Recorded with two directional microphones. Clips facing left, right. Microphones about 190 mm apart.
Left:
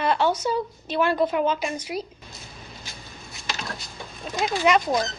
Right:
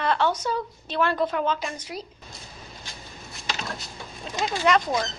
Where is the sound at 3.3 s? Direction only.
Centre (ahead or behind).